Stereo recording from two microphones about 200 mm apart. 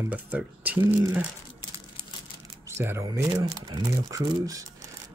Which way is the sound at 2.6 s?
10° right (ahead or behind).